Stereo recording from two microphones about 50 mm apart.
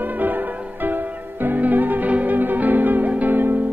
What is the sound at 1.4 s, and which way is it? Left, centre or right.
Music, right.